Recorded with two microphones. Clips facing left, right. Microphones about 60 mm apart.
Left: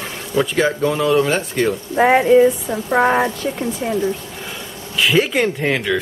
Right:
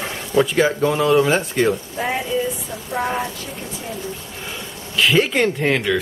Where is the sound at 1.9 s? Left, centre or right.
Left.